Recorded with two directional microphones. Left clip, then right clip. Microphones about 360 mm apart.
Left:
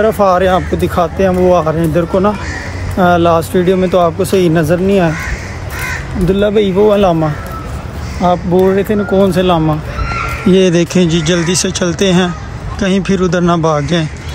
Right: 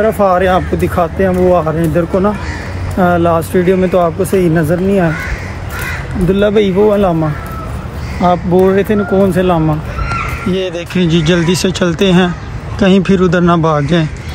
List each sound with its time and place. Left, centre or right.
0.0 s speech: centre
6.2 s speech: centre
10.5 s speech: left
10.9 s speech: centre